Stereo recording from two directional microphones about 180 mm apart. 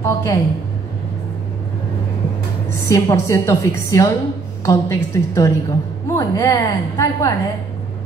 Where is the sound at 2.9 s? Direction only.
15° left (ahead or behind).